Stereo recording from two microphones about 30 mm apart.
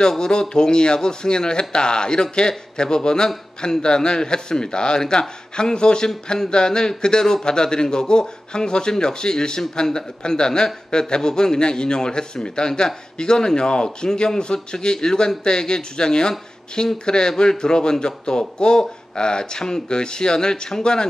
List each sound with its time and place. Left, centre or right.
0.2 s a man's voice: left